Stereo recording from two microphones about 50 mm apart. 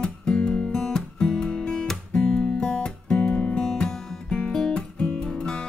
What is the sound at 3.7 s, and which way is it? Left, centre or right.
Music, centre.